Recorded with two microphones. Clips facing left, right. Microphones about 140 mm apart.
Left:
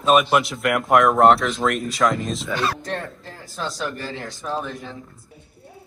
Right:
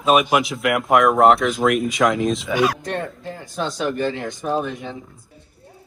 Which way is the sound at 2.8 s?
Centre (ahead or behind).